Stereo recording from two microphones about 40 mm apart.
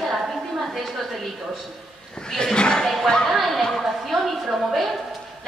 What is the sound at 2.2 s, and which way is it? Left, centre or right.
Speech, centre.